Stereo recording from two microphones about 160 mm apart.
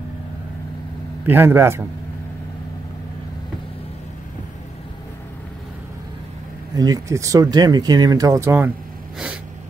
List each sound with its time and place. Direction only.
1.2 s a man's voice: 15° right (ahead or behind)
6.7 s speech: 25° right (ahead or behind)